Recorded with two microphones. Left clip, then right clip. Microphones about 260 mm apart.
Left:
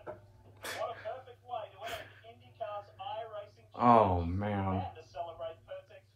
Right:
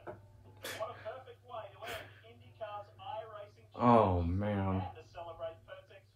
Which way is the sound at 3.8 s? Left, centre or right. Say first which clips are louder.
Left 3 dB; left.